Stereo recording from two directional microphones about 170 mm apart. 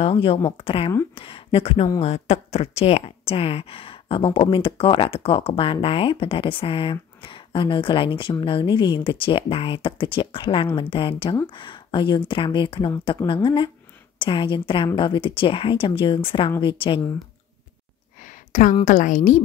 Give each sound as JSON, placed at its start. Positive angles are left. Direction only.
{"t": 0.0, "sound": "speech", "side_deg": 35}
{"t": 18.2, "sound": "a sound", "side_deg": 50}
{"t": 18.9, "sound": "a woman's voice", "side_deg": 50}